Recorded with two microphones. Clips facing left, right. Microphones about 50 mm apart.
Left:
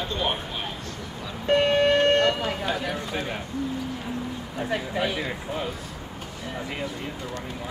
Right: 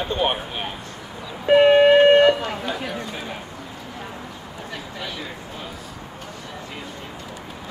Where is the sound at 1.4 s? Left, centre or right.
Centre.